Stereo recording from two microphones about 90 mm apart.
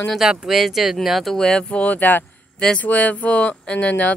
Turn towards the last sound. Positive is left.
turn(degrees=15)  # may be behind; listen again after turning